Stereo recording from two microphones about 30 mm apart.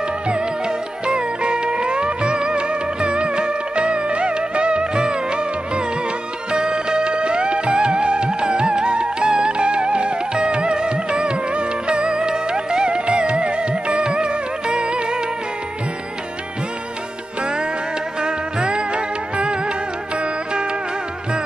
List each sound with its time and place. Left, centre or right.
0.7 s music: right
18.2 s music: right